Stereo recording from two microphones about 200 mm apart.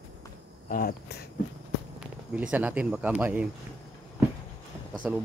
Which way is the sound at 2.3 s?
10° right (ahead or behind).